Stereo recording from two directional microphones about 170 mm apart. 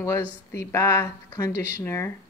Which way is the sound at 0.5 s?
15° left (ahead or behind).